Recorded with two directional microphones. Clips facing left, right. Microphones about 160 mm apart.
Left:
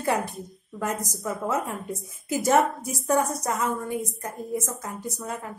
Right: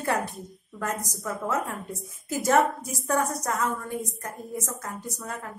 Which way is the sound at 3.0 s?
15° left (ahead or behind).